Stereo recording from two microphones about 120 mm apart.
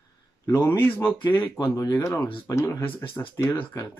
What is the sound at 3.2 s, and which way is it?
Speech, 25° left (ahead or behind).